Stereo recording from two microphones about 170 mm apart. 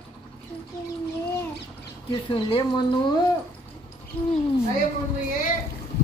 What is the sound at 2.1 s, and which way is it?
Speech, 30° left (ahead or behind).